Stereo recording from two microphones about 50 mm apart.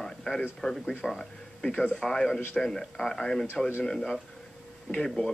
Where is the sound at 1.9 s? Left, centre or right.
Centre.